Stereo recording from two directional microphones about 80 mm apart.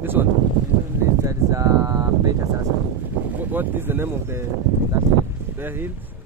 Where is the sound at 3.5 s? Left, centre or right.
Right.